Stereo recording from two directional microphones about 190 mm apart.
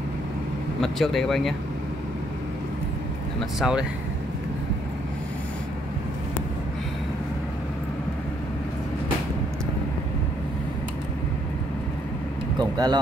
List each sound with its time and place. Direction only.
0.7 s speech: centre (ahead or behind)
3.5 s speech: 5° right (ahead or behind)
12.5 s vehicle: 20° right (ahead or behind)